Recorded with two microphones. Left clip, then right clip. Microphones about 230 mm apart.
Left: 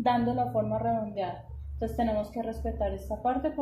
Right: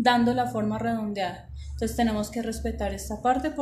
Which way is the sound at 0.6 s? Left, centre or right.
Right.